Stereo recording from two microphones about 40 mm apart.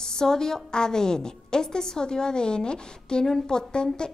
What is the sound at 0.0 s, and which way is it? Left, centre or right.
A woman's voice, centre.